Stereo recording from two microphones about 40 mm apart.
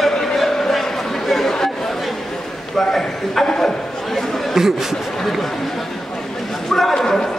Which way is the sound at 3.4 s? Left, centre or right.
Centre.